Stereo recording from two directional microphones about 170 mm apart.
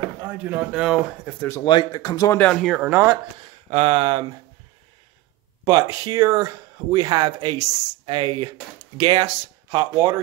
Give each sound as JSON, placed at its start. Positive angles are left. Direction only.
{"t": 0.2, "sound": "speech", "side_deg": -10}
{"t": 1.2, "sound": "speech", "side_deg": 10}
{"t": 1.6, "sound": "speech", "side_deg": 25}
{"t": 2.3, "sound": "speech", "side_deg": 5}
{"t": 2.9, "sound": "speech", "side_deg": -15}
{"t": 3.7, "sound": "speech", "side_deg": -30}
{"t": 5.7, "sound": "speech", "side_deg": -20}